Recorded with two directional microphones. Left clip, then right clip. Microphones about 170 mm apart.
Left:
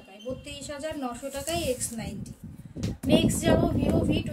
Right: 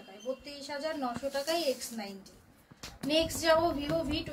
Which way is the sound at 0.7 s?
40° left (ahead or behind).